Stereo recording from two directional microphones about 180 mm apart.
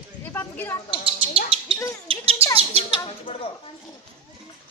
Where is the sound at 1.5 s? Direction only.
30° right (ahead or behind).